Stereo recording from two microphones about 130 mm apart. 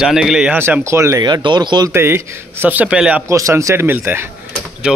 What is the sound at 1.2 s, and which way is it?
Speech, 35° right (ahead or behind).